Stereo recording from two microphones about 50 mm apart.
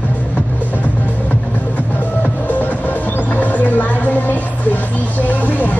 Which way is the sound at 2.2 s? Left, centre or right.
Left.